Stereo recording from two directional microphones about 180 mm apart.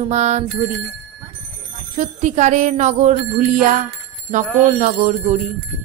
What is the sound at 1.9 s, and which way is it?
Speech, 40° right (ahead or behind).